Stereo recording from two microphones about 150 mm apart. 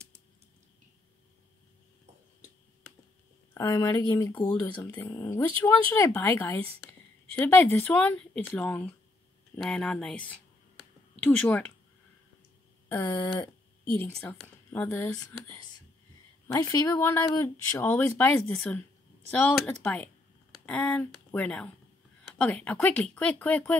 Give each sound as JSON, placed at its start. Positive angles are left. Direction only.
{"t": 3.5, "sound": "speech", "side_deg": 20}
{"t": 12.8, "sound": "a sound", "side_deg": 15}
{"t": 13.1, "sound": "speech", "side_deg": 30}
{"t": 13.9, "sound": "speech", "side_deg": 10}
{"t": 16.5, "sound": "speech", "side_deg": 20}